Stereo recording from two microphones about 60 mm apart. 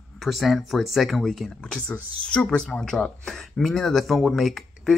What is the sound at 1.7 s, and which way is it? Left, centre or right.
Speech, centre.